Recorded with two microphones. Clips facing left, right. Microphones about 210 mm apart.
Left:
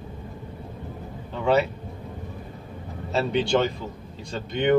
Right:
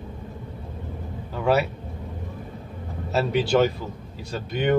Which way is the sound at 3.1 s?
5° right (ahead or behind).